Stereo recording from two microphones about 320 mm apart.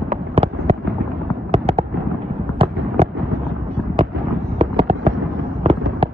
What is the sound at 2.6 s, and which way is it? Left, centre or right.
Fireworks, centre.